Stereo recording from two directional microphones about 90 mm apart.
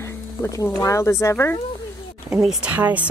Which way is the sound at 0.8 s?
35° left (ahead or behind).